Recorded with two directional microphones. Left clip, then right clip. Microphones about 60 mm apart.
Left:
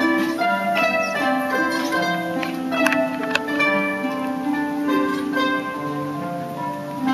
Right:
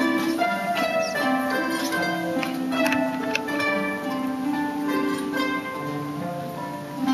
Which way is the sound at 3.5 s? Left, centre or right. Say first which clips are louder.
Left 6 dB; centre.